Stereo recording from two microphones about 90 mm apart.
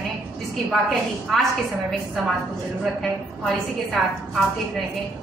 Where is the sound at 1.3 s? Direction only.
Centre (ahead or behind).